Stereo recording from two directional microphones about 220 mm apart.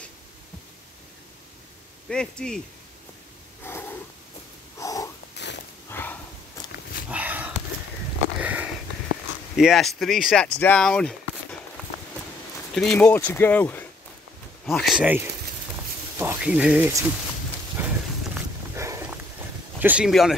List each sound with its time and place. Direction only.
2.0 s speech: 5° left (ahead or behind)
3.6 s a sound: 10° left (ahead or behind)
5.9 s snort: 10° left (ahead or behind)
6.7 s dog: 45° left (ahead or behind)
7.1 s a sound: 5° right (ahead or behind)
9.6 s speech: centre (ahead or behind)
12.7 s speech: 5° left (ahead or behind)
17.7 s a sound: 10° right (ahead or behind)
19.8 s speech: 5° right (ahead or behind)